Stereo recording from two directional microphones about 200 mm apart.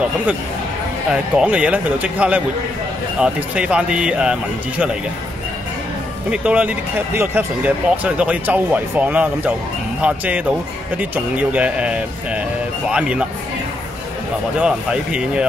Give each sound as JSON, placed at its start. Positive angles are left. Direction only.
{"t": 1.1, "sound": "speech", "side_deg": -5}
{"t": 6.3, "sound": "speech", "side_deg": -5}
{"t": 14.6, "sound": "speech", "side_deg": -5}